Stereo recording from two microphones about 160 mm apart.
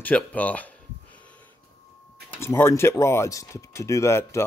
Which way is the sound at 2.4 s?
15° left (ahead or behind).